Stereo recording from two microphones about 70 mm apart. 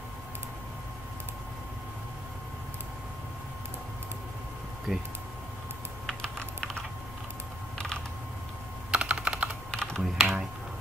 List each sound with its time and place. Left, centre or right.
4.9 s speech: centre
6.0 s typing: centre
8.9 s computer keyboard: centre
9.7 s computer keyboard: centre
10.0 s typing: centre